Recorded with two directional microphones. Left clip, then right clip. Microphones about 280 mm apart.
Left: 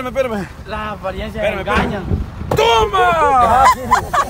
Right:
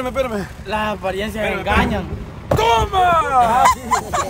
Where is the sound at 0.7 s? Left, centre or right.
Right.